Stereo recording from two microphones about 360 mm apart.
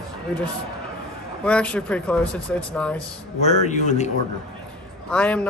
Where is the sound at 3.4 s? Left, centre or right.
Centre.